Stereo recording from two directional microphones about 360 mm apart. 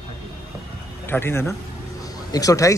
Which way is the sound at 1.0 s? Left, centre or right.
Centre.